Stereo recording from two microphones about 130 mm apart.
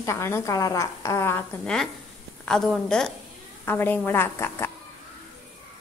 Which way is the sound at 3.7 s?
15° left (ahead or behind).